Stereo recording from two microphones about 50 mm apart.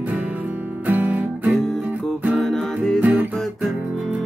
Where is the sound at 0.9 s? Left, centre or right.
Right.